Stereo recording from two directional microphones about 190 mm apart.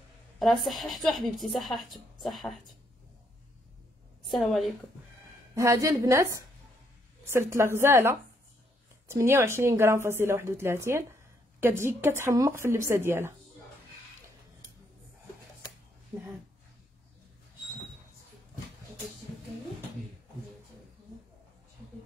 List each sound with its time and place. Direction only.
0.4 s a woman's voice: centre (ahead or behind)
4.3 s a woman's voice: centre (ahead or behind)
5.5 s a woman's voice: 15° right (ahead or behind)